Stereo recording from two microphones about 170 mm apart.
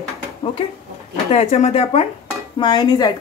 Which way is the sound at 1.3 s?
40° left (ahead or behind).